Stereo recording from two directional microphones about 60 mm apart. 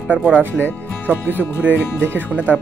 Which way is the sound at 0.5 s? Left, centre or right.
Left.